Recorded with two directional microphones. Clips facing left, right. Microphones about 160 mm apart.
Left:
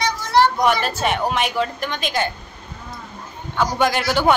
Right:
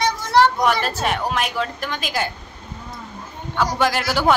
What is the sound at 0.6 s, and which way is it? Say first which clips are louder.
A woman's voice: left 1 dB; centre (ahead or behind).